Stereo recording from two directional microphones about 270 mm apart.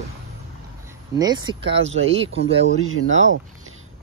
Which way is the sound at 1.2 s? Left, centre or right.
Centre.